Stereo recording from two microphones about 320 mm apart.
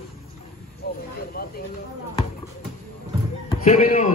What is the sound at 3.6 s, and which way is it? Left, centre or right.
Speech, left.